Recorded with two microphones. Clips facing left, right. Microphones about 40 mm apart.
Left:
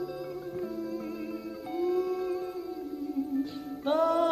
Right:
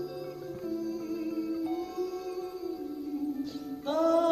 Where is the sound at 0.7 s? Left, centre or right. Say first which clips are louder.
Right 1 dB; left.